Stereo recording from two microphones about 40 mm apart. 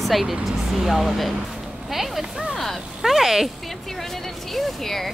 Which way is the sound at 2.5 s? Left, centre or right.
Centre.